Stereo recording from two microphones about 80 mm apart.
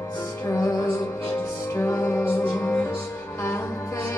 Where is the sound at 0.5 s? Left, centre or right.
Left.